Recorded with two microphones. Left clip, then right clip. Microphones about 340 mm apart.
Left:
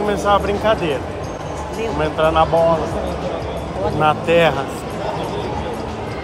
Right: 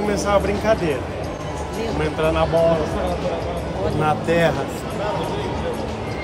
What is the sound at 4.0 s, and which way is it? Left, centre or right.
Speech, centre.